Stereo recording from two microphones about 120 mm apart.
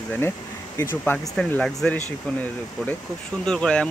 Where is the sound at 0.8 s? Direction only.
20° left (ahead or behind).